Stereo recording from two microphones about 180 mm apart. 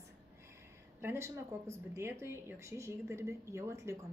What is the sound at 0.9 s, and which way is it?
Speech, 15° right (ahead or behind).